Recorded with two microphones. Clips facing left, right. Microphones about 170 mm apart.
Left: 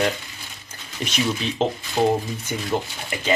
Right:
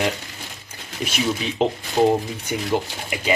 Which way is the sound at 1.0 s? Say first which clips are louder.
Right 1 dB; 5° right (ahead or behind).